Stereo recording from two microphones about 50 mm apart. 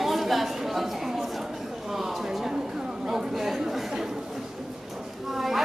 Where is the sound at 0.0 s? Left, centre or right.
Centre.